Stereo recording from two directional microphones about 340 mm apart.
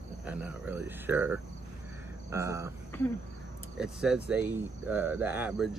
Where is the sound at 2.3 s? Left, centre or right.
Centre.